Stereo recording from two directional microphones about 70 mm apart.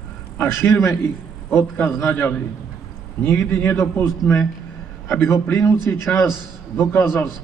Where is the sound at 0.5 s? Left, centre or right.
Left.